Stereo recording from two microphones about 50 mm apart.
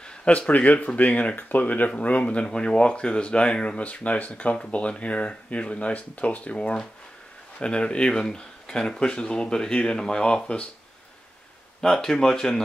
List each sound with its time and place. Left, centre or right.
0.0 s a sound: centre
0.5 s speech: left
11.8 s speech: centre